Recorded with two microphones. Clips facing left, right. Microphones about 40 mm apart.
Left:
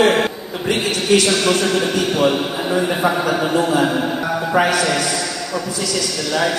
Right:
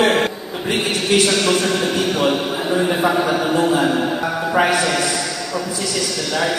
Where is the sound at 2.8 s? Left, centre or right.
Centre.